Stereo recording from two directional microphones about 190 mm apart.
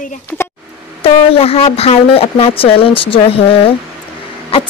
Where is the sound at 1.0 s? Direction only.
30° left (ahead or behind).